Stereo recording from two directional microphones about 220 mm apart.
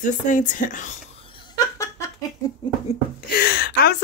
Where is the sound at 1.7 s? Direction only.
15° left (ahead or behind).